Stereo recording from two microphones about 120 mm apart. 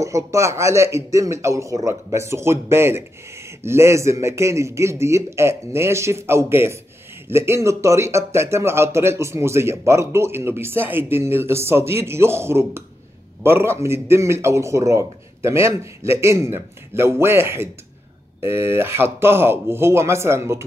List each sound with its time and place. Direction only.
0.0 s speech: 25° right (ahead or behind)